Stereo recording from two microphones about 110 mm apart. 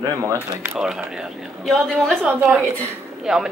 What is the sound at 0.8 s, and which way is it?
Speech, 5° right (ahead or behind).